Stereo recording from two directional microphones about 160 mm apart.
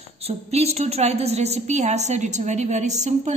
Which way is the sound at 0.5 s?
40° right (ahead or behind).